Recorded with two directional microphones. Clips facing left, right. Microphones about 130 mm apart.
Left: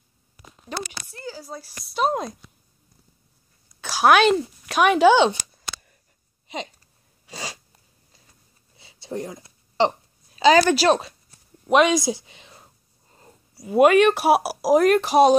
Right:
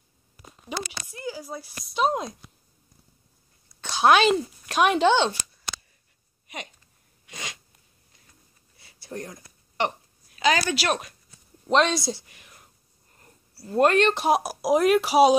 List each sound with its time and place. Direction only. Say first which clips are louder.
0.7 s speech: left 1 dB; 15° right (ahead or behind)
1.6 s speech: left 1 dB; centre (ahead or behind)
3.8 s speech: left 2 dB; 5° left (ahead or behind)
7.2 s sneeze: left 4 dB; 30° left (ahead or behind)
8.7 s a sound: left 5 dB; 20° left (ahead or behind)
10.7 s speech: left 8 dB; 35° left (ahead or behind)
11.7 s speech: left 4 dB; 10° left (ahead or behind)
13.1 s a sound: left 5 dB; 20° left (ahead or behind)
13.7 s speech: left 5 dB; 10° left (ahead or behind)